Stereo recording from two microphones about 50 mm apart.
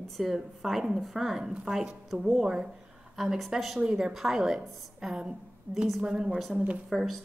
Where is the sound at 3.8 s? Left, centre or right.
Centre.